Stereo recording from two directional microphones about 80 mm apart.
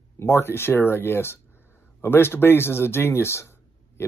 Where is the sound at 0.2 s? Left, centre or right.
Left.